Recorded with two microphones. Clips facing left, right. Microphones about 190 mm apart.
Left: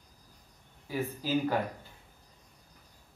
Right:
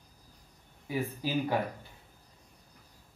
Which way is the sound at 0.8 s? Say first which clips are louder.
Even; 15° right (ahead or behind).